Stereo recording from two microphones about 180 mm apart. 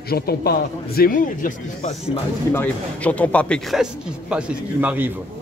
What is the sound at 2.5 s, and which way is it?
Speech, 10° left (ahead or behind).